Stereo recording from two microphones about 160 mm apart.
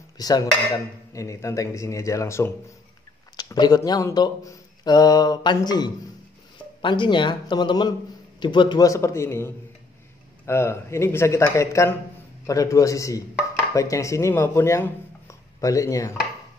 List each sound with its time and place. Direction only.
0.2 s speech: 25° left (ahead or behind)